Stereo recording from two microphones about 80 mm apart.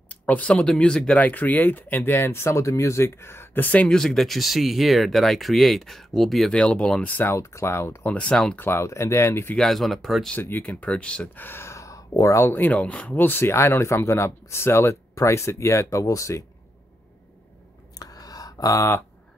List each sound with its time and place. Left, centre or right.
0.1 s speech: centre
3.9 s speech: centre
7.3 s speech: left
8.0 s speech: centre
8.5 s speech: left
9.6 s speech: centre
10.4 s speech: left
11.3 s a sound: left
12.4 s speech: left
17.9 s a sound: left